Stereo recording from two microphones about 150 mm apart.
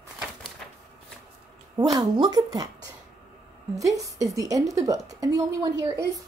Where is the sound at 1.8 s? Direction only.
25° right (ahead or behind).